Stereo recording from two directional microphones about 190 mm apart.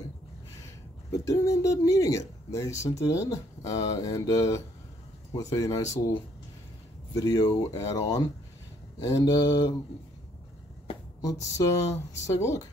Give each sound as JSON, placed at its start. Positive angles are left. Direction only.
{"t": 1.1, "sound": "speech", "side_deg": 15}
{"t": 7.2, "sound": "speech", "side_deg": 20}
{"t": 11.1, "sound": "a sound", "side_deg": 20}
{"t": 12.3, "sound": "speech", "side_deg": 15}